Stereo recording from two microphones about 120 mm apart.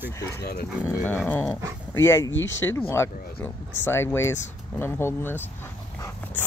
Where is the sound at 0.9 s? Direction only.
20° left (ahead or behind).